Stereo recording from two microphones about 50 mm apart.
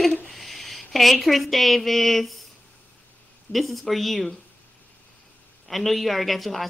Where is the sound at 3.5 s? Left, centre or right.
Centre.